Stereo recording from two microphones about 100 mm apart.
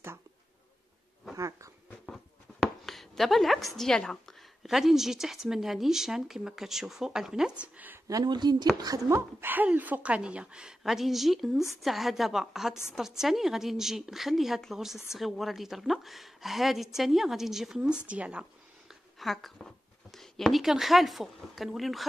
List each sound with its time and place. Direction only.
1.3 s a sound: 30° right (ahead or behind)
2.6 s speech: 5° left (ahead or behind); by 8.0 s 15° right (ahead or behind)
8.1 s a woman's voice: 45° right (ahead or behind)
9.4 s a woman's voice: 20° right (ahead or behind)
19.1 s speech: centre (ahead or behind)